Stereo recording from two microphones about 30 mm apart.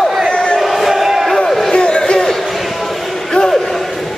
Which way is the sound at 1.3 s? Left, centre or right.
Centre.